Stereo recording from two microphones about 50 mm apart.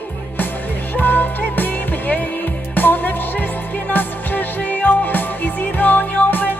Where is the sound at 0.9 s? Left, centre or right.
Left.